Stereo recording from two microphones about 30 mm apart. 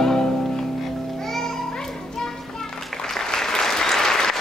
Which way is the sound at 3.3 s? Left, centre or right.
Centre.